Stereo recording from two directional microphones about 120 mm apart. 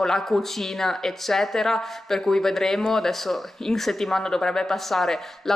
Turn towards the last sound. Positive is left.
turn(degrees=0)  # may be behind; listen again after turning